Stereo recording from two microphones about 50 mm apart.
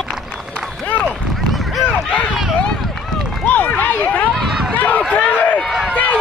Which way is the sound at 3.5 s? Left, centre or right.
Left.